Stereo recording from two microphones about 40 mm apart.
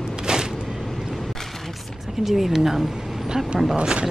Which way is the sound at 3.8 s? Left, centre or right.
Right.